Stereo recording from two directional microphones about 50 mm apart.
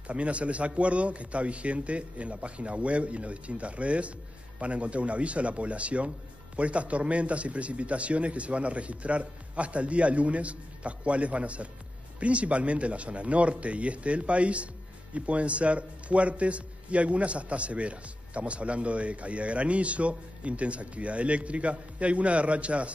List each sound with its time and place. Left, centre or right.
0.0 s a man's voice: right